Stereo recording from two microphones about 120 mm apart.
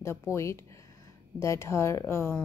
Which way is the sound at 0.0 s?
20° left (ahead or behind).